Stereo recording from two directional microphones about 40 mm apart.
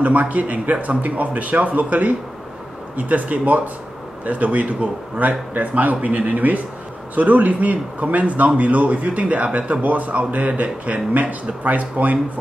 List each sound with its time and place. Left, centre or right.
0.0 s a man's voice: right